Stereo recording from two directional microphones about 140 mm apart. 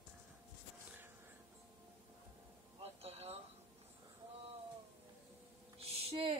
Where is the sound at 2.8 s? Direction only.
45° right (ahead or behind).